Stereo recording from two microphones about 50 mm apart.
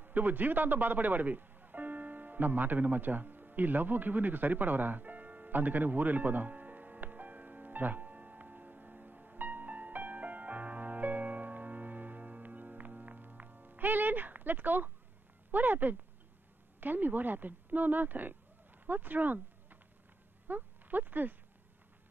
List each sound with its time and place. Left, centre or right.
0.0 s music: right
15.5 s speech: right
20.4 s a sound: right